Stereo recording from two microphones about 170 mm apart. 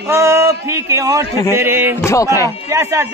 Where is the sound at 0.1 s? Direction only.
15° right (ahead or behind).